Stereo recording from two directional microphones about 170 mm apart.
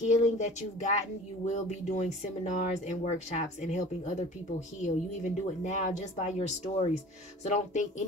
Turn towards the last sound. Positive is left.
turn(degrees=45)  # may be behind; listen again after turning